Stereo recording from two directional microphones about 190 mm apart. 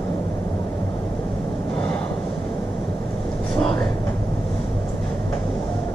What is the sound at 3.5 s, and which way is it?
Train, 25° left (ahead or behind).